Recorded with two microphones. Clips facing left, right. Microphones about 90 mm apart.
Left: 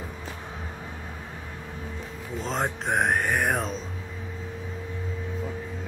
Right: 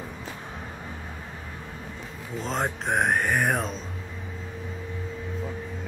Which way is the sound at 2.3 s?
Centre (ahead or behind).